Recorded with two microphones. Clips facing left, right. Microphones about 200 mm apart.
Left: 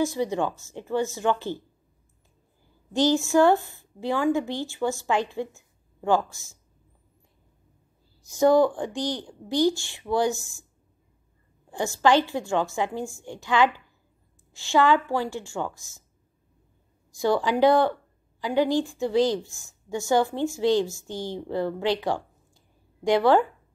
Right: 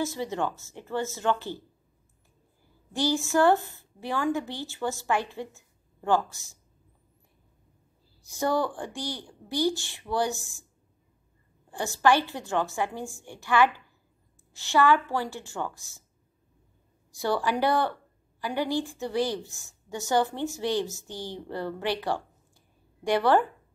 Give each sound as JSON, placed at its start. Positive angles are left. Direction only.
{"t": 0.0, "sound": "a woman's voice", "side_deg": 15}
{"t": 2.9, "sound": "a woman's voice", "side_deg": 15}
{"t": 5.5, "sound": "a sound", "side_deg": 15}
{"t": 8.4, "sound": "a woman's voice", "side_deg": 15}
{"t": 10.3, "sound": "speech", "side_deg": -15}
{"t": 12.0, "sound": "a woman's voice", "side_deg": 15}
{"t": 17.2, "sound": "a woman's voice", "side_deg": 15}
{"t": 23.0, "sound": "a woman's voice", "side_deg": 15}